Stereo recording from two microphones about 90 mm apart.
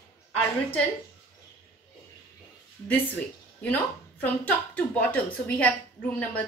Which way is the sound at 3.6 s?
20° left (ahead or behind).